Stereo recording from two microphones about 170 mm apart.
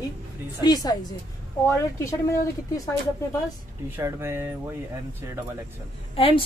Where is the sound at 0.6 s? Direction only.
25° left (ahead or behind).